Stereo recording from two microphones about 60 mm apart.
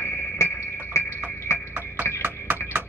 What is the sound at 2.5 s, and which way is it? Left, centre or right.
Music, right.